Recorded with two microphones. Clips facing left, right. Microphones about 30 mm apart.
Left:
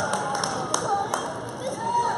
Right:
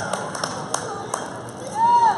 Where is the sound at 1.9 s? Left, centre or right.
Centre.